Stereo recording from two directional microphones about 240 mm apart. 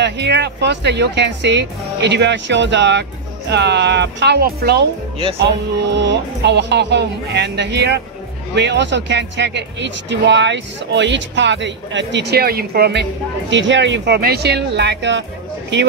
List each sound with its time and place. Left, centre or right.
0.0 s speech: right
5.9 s speech: right